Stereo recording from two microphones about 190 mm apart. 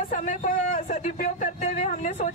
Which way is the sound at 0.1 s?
40° left (ahead or behind).